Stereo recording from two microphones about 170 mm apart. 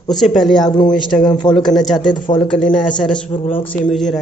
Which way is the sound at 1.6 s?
Centre (ahead or behind).